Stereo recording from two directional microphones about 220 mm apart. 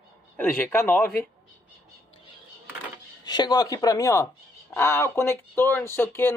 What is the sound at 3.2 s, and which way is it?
Speech, 20° left (ahead or behind).